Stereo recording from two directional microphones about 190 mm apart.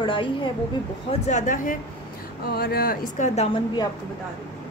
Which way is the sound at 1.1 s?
40° left (ahead or behind).